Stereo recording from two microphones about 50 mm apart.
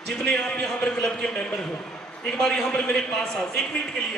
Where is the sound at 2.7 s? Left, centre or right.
Left.